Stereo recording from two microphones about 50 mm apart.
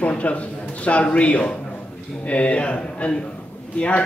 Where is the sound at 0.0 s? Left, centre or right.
Left.